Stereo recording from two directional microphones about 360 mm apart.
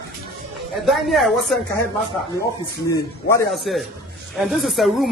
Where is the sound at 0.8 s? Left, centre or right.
Centre.